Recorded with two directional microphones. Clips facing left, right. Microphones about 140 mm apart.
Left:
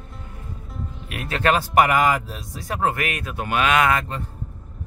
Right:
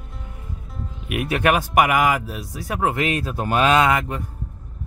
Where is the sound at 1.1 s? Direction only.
15° right (ahead or behind).